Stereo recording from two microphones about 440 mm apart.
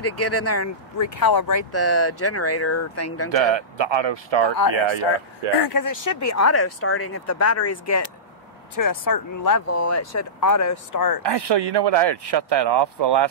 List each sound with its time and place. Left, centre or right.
0.0 s speech: left
3.3 s speech: right
4.7 s speech: right
5.7 s speech: left
8.7 s speech: left
11.2 s speech: right